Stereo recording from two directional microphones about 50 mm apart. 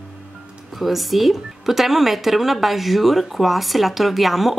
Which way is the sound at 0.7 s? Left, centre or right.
Centre.